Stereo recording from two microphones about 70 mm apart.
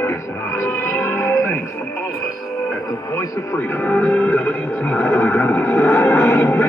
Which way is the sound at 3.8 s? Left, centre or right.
Left.